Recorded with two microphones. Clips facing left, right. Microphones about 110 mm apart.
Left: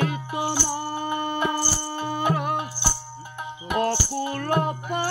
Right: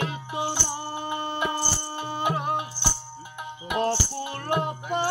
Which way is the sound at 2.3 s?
25° right (ahead or behind).